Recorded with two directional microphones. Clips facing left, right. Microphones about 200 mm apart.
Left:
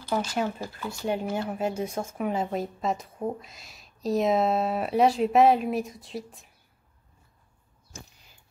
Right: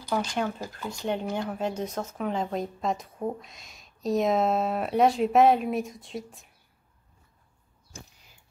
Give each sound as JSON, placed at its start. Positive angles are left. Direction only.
{"t": 0.1, "sound": "a woman's voice", "side_deg": 5}